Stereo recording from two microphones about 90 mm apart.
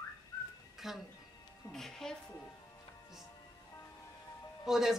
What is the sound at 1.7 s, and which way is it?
Music, 5° left (ahead or behind).